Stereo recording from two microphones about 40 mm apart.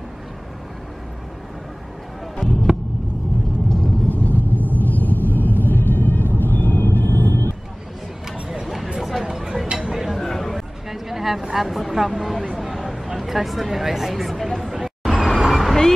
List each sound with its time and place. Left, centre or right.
2.4 s heart sounds: centre
4.1 s rumble: left
8.3 s music: centre
8.6 s a sound: centre
10.1 s chatter: centre
10.9 s a sound: centre
13.2 s speech: centre
15.0 s vehicle: centre